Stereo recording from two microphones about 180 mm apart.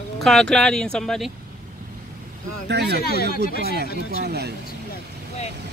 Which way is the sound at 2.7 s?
70° right (ahead or behind).